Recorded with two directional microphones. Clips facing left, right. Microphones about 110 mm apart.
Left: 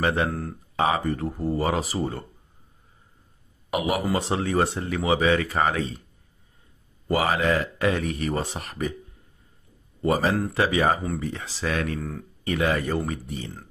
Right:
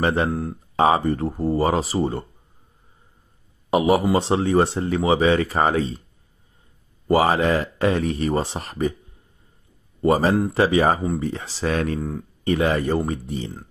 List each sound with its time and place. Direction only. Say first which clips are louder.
0.0 s speech: right 3 dB; 30° right (ahead or behind)
0.3 s speech: right 5 dB; 15° right (ahead or behind)
0.7 s speech: right 5 dB; 35° right (ahead or behind)
3.7 s speech: right 7 dB; 30° right (ahead or behind)
7.1 s speech: right 5 dB; 30° right (ahead or behind)
10.0 s speech: right 5 dB; 35° right (ahead or behind)
12.0 s speech: right 5 dB; 15° right (ahead or behind)
12.4 s speech: right 4 dB; 30° right (ahead or behind)